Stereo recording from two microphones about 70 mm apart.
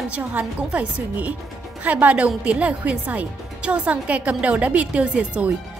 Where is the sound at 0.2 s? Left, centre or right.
Right.